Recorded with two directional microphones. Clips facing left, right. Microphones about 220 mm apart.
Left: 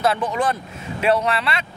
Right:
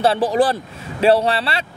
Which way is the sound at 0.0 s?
30° right (ahead or behind).